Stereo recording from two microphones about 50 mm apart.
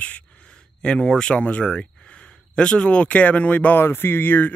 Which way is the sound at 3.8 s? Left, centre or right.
Left.